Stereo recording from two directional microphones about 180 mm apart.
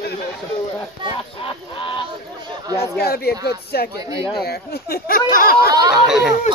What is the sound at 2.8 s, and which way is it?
Speech, 60° left (ahead or behind).